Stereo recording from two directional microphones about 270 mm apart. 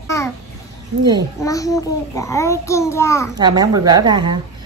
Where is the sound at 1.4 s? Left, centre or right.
Centre.